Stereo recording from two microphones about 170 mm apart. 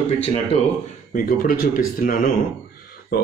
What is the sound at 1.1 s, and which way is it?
Speech, 55° left (ahead or behind).